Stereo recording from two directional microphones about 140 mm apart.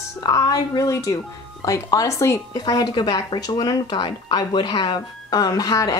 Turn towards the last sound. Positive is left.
turn(degrees=25)  # may be behind; listen again after turning